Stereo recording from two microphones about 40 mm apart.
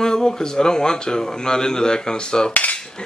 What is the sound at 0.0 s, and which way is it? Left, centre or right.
A man's voice, centre.